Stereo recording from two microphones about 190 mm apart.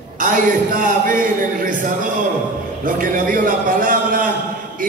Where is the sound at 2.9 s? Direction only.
45° right (ahead or behind).